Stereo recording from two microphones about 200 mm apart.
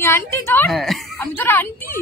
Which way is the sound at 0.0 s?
10° left (ahead or behind).